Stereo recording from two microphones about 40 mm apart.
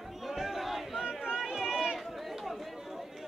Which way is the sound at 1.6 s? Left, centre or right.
Centre.